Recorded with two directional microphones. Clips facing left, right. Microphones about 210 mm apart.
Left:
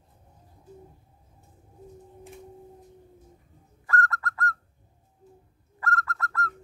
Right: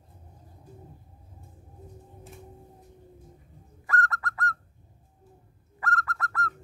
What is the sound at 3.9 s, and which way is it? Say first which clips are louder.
Bird: left 1 dB; 20° right (ahead or behind).